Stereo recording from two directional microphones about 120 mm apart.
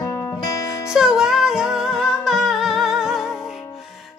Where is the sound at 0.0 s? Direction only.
30° left (ahead or behind).